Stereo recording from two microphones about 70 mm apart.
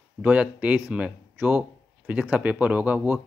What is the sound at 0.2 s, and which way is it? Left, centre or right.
Speech, right.